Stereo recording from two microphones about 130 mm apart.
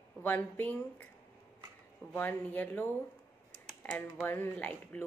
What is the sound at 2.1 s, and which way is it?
Speech, 15° left (ahead or behind).